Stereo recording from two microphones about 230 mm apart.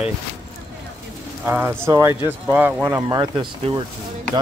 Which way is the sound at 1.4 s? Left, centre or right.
Centre.